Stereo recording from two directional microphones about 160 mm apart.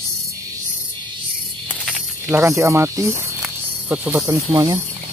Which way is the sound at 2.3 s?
20° right (ahead or behind).